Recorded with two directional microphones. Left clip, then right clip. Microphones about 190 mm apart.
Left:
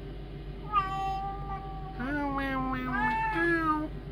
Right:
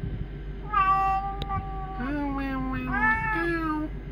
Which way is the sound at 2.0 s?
Centre (ahead or behind).